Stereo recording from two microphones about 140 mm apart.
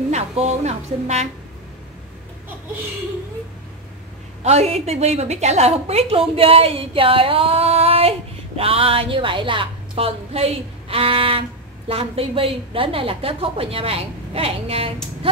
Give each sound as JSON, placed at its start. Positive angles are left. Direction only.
{"t": 0.1, "sound": "a woman's voice", "side_deg": -50}
{"t": 4.4, "sound": "a woman's voice", "side_deg": -50}